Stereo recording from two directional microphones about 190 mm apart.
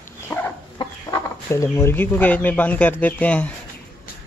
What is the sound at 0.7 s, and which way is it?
Speech, 15° left (ahead or behind).